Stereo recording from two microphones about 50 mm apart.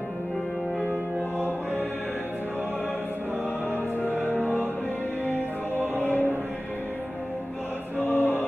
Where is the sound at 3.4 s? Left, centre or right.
Left.